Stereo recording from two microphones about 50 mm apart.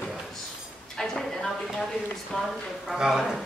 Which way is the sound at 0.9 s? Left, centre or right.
Centre.